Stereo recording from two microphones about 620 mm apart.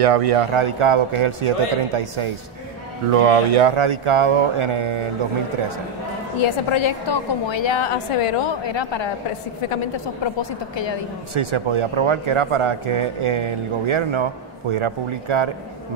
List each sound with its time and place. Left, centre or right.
0.0 s speech: right
3.1 s speech: right
6.3 s a woman's voice: left
11.3 s speech: right